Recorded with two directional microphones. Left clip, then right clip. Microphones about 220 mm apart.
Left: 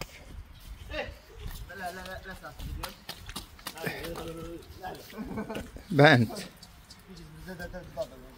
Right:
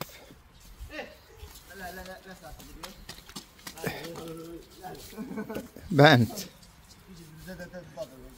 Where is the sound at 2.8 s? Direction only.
5° right (ahead or behind).